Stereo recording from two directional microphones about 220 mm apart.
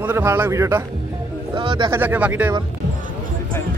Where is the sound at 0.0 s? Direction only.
10° right (ahead or behind).